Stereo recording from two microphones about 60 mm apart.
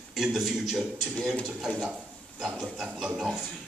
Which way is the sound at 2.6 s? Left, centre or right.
Centre.